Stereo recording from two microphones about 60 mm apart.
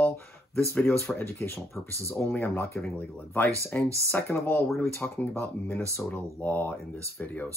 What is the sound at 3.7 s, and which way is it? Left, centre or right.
Speech, left.